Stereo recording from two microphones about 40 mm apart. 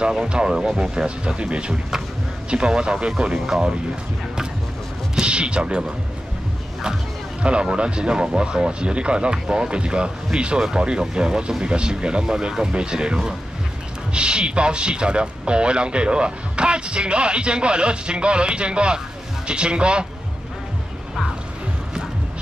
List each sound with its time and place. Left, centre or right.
0.0 s a man's voice: right
3.3 s speech: centre
5.2 s a man's voice: right
7.4 s a man's voice: right